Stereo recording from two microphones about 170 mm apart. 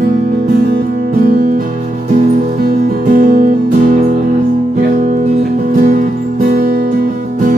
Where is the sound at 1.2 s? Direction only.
60° right (ahead or behind).